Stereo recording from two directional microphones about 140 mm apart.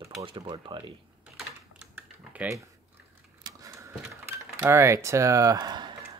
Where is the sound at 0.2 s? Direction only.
35° right (ahead or behind).